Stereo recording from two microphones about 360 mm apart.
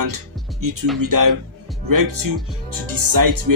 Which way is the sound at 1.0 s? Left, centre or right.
Right.